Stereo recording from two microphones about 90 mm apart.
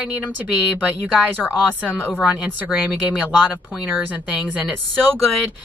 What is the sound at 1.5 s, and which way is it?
Speech, 20° left (ahead or behind).